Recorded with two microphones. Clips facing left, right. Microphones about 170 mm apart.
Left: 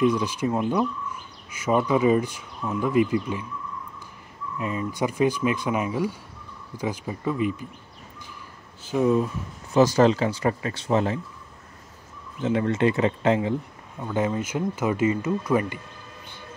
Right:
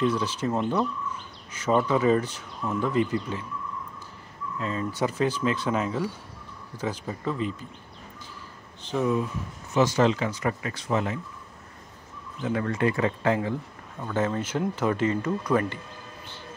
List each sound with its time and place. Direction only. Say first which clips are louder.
0.0 s speech: left 3 dB; 15° left (ahead or behind)
4.6 s speech: left 1 dB; 15° left (ahead or behind)
8.9 s speech: left 4 dB; 10° left (ahead or behind)
9.8 s speech: left 4 dB; 40° left (ahead or behind)
12.4 s speech: left 4 dB; 25° left (ahead or behind); by 15.8 s 10° left (ahead or behind)